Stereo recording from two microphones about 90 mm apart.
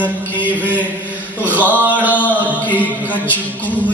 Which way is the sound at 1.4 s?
20° right (ahead or behind).